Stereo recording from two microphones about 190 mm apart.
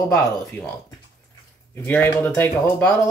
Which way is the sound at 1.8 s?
10° left (ahead or behind).